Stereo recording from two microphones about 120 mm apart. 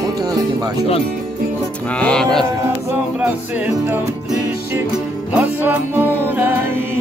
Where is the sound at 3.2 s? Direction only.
15° right (ahead or behind).